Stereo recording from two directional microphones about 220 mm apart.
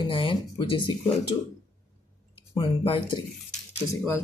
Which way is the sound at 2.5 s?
20° left (ahead or behind).